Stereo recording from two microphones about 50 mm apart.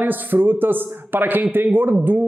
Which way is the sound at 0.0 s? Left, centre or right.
Right.